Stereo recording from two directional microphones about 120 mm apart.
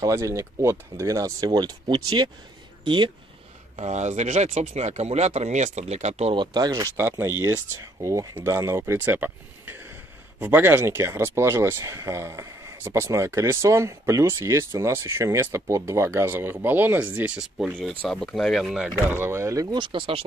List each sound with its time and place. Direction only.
0.0 s speech: 25° right (ahead or behind); by 3.1 s 45° right (ahead or behind)
3.7 s speech: 70° right (ahead or behind)
6.3 s speech: 40° right (ahead or behind); by 17.5 s 15° right (ahead or behind)
17.7 s speech: centre (ahead or behind)
19.0 s speech: 20° right (ahead or behind)
19.8 s speech: 45° right (ahead or behind)